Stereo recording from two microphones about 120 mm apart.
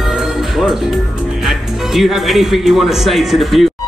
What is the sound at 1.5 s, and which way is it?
Speech, 5° right (ahead or behind).